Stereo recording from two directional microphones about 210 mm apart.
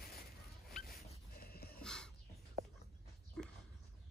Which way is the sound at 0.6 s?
45° left (ahead or behind).